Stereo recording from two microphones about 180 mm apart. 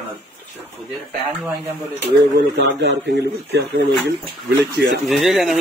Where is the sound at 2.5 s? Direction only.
80° right.